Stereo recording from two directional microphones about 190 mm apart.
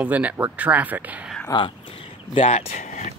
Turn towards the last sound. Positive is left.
turn(degrees=40)  # may be behind; listen again after turning